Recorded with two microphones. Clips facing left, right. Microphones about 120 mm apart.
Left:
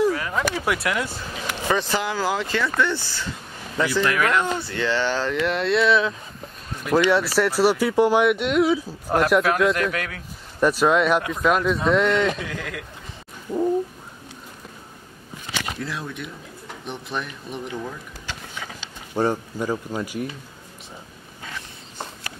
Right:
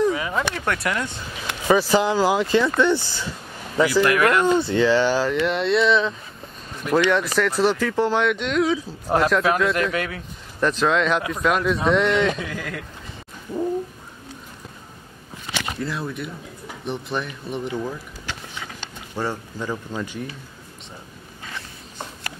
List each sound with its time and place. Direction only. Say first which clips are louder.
0.0 s a sound: even; centre (ahead or behind)
0.6 s speech: left 1 dB; 5° left (ahead or behind)
1.7 s speech: right 6 dB; 15° right (ahead or behind)
4.6 s speech: right 6 dB; 20° right (ahead or behind); by 12.8 s centre (ahead or behind)
15.8 s speech: right 3 dB; centre (ahead or behind)
19.1 s speech: left 5 dB; 15° left (ahead or behind)